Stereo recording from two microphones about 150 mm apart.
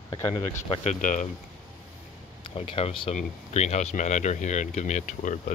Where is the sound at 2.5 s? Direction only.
40° left (ahead or behind).